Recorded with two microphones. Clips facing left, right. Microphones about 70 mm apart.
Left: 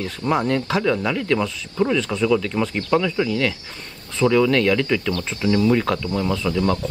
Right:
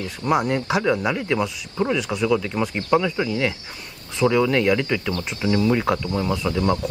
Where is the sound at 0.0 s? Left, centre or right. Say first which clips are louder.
Even; centre.